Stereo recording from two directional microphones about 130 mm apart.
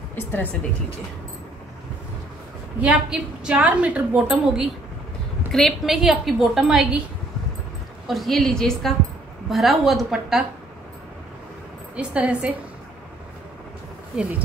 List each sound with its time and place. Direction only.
0.1 s speech: 15° left (ahead or behind)
2.8 s a woman's voice: 10° right (ahead or behind)
5.5 s a woman's voice: centre (ahead or behind)
8.1 s a woman's voice: centre (ahead or behind)
11.9 s a woman's voice: 10° right (ahead or behind)
14.1 s a woman's voice: 5° right (ahead or behind)